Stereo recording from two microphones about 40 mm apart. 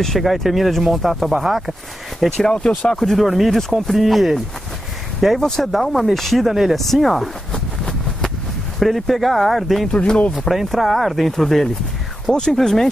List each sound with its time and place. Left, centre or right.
0.0 s speech: centre
0.3 s speech: centre
2.3 s speech: left
2.9 s speech: centre
8.7 s speech: centre
9.9 s speech: left
10.5 s speech: centre